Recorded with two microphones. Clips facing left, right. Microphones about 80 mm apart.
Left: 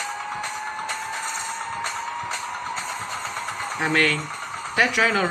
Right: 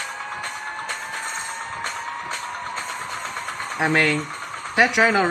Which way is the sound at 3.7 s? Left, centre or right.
Centre.